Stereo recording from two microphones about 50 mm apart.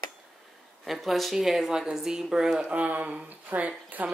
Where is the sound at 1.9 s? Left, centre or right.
Centre.